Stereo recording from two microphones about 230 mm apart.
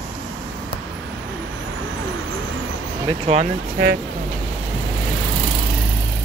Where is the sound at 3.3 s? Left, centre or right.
Right.